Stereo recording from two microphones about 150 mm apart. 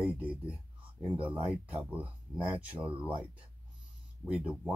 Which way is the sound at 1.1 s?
35° right (ahead or behind).